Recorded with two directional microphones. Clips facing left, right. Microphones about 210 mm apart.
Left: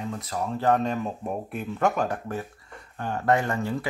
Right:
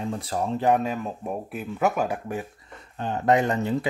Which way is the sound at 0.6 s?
10° right (ahead or behind).